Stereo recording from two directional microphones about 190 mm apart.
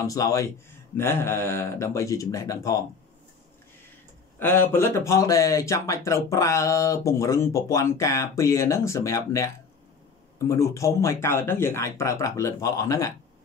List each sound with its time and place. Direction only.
0.0 s speech: 15° left (ahead or behind)
4.4 s speech: 10° left (ahead or behind)